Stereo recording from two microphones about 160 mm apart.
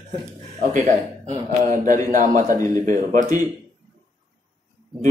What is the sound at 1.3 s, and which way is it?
A man's voice, 55° right (ahead or behind).